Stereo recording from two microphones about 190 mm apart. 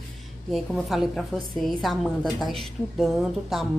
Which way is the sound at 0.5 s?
Centre (ahead or behind).